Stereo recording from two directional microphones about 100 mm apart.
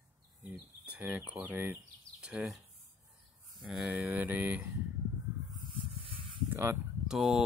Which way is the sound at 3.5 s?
5° right (ahead or behind).